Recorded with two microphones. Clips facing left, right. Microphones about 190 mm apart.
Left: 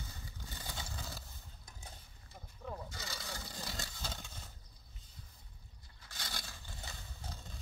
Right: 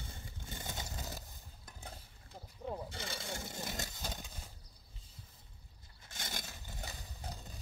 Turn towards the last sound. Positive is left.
turn(degrees=-15)  # may be behind; listen again after turning